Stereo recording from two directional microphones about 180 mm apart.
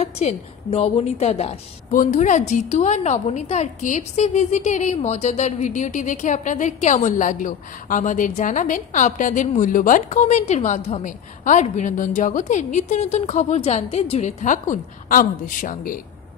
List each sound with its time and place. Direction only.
0.0 s a woman's voice: 40° left (ahead or behind)